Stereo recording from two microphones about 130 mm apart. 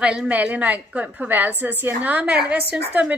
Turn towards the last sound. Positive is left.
turn(degrees=-10)  # may be behind; listen again after turning